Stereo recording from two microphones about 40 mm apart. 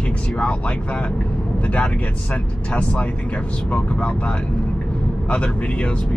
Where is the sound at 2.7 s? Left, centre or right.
Left.